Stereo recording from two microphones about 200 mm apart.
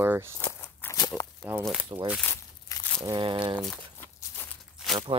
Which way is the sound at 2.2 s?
10° left (ahead or behind).